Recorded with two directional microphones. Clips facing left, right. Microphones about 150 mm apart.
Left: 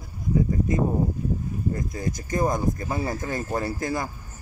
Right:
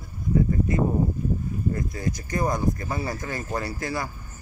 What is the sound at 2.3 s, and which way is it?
Speech, 20° left (ahead or behind).